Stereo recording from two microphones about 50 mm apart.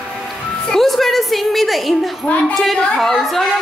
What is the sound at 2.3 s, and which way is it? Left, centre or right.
Speech, left.